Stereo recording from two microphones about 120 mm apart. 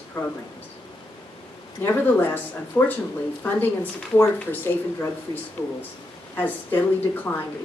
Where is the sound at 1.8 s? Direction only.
20° left (ahead or behind).